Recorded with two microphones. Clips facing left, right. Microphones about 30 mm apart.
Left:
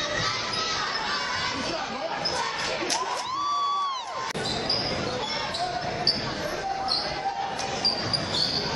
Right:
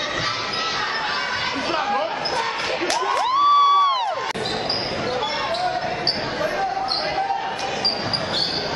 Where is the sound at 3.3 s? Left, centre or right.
Right.